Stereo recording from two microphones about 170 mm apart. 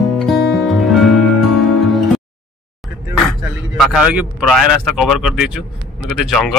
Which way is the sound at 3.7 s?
5° right (ahead or behind).